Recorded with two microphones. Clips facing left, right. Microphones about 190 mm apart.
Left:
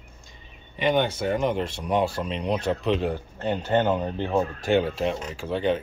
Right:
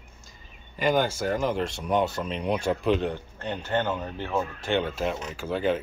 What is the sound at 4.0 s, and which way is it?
Speech, 30° left (ahead or behind).